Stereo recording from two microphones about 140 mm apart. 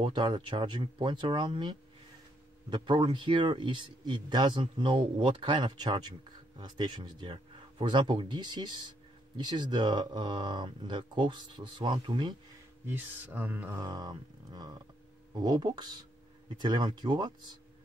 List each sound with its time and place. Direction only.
0.0 s speech: 35° right (ahead or behind)
12.8 s speech: 15° right (ahead or behind)
13.7 s a sound: 30° right (ahead or behind)
15.3 s speech: 30° right (ahead or behind)